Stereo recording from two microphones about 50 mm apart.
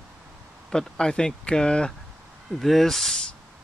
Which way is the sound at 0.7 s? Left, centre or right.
Centre.